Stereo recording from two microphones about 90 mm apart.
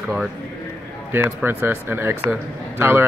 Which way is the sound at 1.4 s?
25° right (ahead or behind).